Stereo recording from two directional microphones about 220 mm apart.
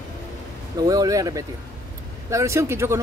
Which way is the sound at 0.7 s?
15° right (ahead or behind).